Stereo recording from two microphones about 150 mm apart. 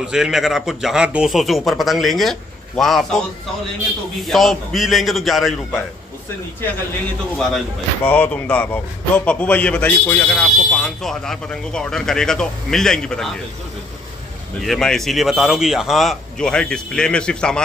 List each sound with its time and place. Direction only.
0.0 s speech: 5° right (ahead or behind)
4.2 s speech: centre (ahead or behind)
7.3 s speech: 10° left (ahead or behind)
14.6 s speech: centre (ahead or behind)